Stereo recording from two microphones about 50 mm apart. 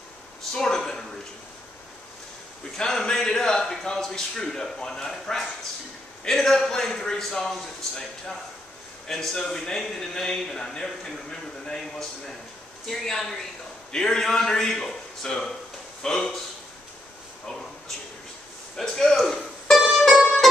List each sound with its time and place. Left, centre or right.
0.5 s speech: centre
2.8 s a man's voice: centre
18.8 s speech: centre
19.8 s mandolin: centre